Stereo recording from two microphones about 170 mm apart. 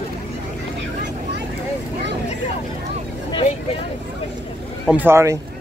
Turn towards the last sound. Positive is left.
turn(degrees=-15)  # may be behind; listen again after turning